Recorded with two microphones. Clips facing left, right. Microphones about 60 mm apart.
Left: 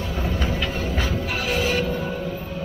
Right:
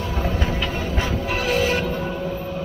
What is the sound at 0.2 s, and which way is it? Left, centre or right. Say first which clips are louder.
Music: right 1 dB; right.